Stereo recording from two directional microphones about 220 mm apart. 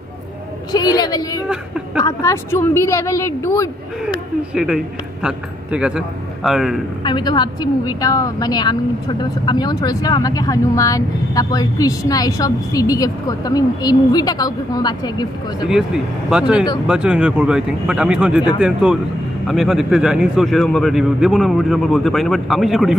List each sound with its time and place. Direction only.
0.7 s a woman's voice: 20° left (ahead or behind)
4.6 s a man's voice: centre (ahead or behind)
7.1 s speech: 20° left (ahead or behind)
15.6 s a man's voice: 5° right (ahead or behind)